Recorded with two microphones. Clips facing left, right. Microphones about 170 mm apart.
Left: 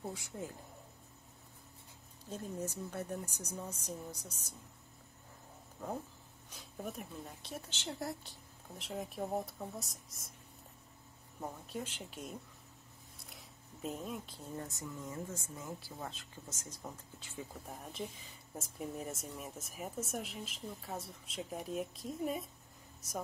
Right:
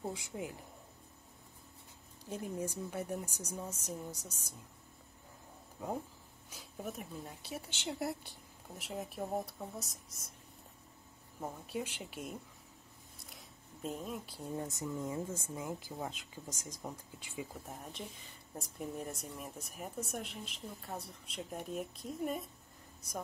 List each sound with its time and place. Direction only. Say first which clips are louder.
0.0 s speech: right 2 dB; 15° right (ahead or behind)
2.2 s speech: right 2 dB; 10° right (ahead or behind)
5.8 s speech: right 2 dB; 10° right (ahead or behind)
11.4 s speech: right 2 dB; 10° right (ahead or behind)
17.6 s speech: left 2 dB; centre (ahead or behind)